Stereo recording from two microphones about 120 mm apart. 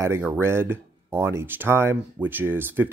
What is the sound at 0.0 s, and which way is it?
Speech, 20° right (ahead or behind).